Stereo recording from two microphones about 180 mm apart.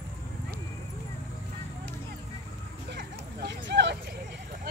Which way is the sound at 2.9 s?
75° right (ahead or behind).